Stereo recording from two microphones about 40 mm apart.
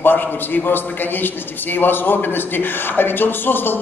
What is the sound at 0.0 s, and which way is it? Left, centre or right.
A man's voice, left.